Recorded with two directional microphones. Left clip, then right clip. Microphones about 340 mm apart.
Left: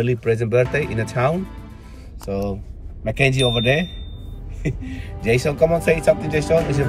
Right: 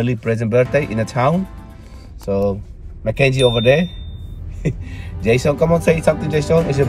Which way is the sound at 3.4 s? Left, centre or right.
Centre.